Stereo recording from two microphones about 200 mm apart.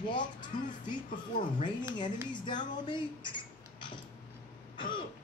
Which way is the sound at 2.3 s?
20° left (ahead or behind).